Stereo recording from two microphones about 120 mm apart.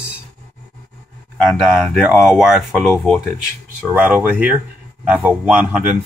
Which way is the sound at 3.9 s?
15° right (ahead or behind).